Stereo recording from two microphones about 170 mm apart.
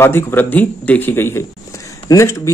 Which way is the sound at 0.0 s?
15° left (ahead or behind).